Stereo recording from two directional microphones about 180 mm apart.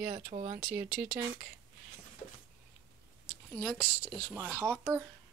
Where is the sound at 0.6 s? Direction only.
5° right (ahead or behind).